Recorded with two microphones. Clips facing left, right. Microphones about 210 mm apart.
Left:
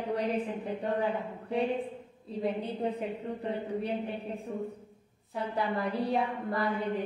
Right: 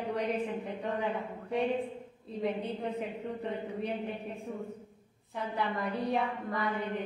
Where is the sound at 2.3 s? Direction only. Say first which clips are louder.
Left 1 dB; 35° left (ahead or behind).